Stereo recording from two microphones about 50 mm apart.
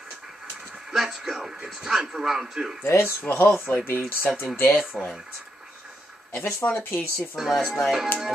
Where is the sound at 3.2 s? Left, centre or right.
Left.